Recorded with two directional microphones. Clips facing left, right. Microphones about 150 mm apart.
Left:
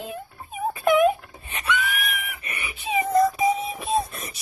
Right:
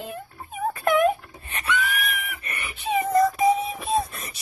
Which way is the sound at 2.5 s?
5° left (ahead or behind).